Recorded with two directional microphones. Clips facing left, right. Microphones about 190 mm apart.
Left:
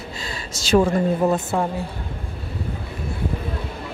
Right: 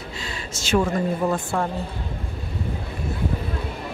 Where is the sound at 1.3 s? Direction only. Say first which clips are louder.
Left 3 dB; 20° left (ahead or behind).